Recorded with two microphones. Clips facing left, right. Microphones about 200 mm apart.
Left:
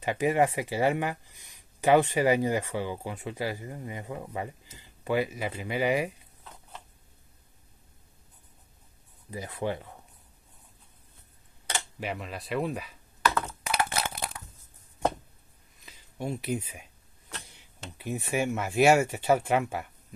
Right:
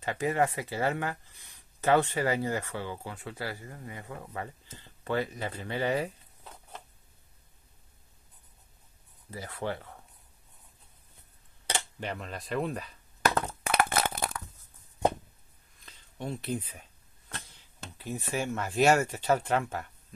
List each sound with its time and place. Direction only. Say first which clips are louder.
0.0 s speech: left 3 dB; 15° left (ahead or behind)
9.3 s speech: left 3 dB; 15° left (ahead or behind)
12.0 s speech: left 2 dB; 5° left (ahead or behind)
13.2 s a sound: even; 45° right (ahead or behind)
15.8 s speech: left 3 dB; 10° left (ahead or behind)
17.5 s a sound: left 2 dB; 15° left (ahead or behind)
18.3 s speech: left 4 dB; 10° left (ahead or behind)